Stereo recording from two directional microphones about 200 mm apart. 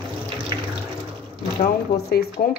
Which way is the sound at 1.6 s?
50° left (ahead or behind).